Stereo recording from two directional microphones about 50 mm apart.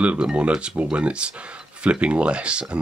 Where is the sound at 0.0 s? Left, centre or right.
Right.